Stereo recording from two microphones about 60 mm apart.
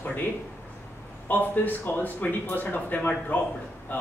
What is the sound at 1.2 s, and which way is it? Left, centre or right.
Speech, left.